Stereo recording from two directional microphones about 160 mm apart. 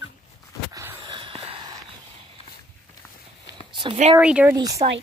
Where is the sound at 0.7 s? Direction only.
15° right (ahead or behind).